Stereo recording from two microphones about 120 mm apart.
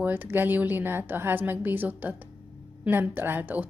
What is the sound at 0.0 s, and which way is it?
A woman's voice, 15° right (ahead or behind).